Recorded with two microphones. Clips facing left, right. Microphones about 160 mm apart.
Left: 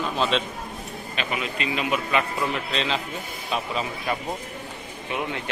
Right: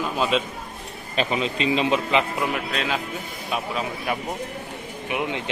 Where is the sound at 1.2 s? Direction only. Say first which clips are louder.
Right 6 dB; 30° right (ahead or behind).